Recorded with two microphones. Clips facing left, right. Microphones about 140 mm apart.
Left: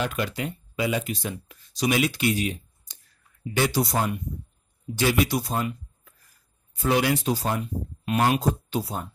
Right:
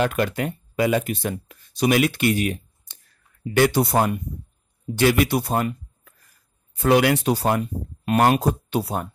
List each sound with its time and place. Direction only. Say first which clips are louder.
0.0 s speech: right 6 dB; 55° right (ahead or behind)